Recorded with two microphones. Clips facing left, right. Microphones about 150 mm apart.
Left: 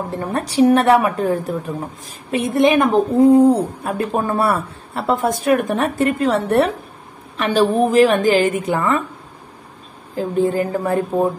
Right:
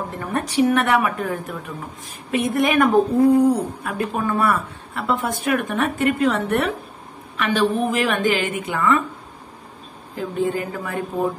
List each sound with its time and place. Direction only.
0.1 s a woman's voice: 30° left (ahead or behind)
10.1 s a woman's voice: 35° left (ahead or behind)